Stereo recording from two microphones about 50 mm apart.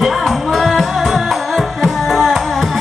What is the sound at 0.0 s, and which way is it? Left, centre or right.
Music, centre.